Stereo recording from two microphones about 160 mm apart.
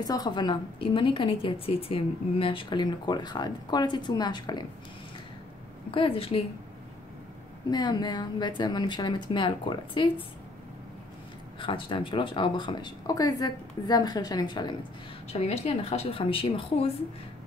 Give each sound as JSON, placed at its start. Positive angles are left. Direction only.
{"t": 0.0, "sound": "a woman's voice", "side_deg": 25}
{"t": 5.9, "sound": "a woman's voice", "side_deg": 35}
{"t": 7.7, "sound": "a woman's voice", "side_deg": 25}
{"t": 11.6, "sound": "a woman's voice", "side_deg": 35}
{"t": 15.3, "sound": "a woman's voice", "side_deg": 40}